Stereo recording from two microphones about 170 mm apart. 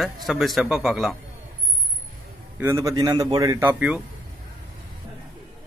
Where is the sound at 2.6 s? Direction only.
15° right (ahead or behind).